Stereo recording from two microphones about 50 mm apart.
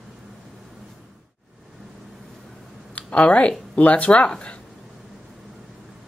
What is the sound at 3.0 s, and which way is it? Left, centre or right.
Speech, left.